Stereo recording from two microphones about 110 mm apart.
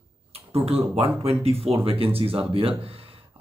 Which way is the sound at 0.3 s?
60° right (ahead or behind).